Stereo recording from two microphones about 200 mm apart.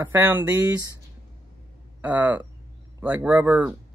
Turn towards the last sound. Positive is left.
turn(degrees=-5)  # may be behind; listen again after turning